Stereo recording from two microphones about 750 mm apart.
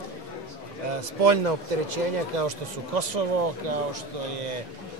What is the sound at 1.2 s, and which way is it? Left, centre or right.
Speech, right.